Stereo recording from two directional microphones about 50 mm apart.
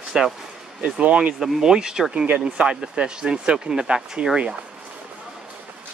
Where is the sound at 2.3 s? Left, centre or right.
Right.